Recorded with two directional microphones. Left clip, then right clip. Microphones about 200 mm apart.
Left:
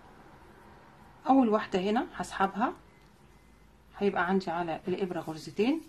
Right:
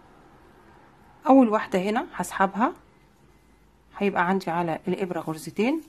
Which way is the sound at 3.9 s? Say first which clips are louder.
Right 5 dB; 40° right (ahead or behind).